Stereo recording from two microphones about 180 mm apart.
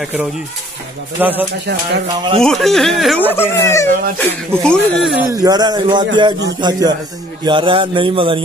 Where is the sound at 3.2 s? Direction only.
10° left (ahead or behind).